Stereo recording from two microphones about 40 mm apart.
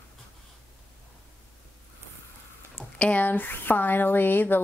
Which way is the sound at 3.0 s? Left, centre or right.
Left.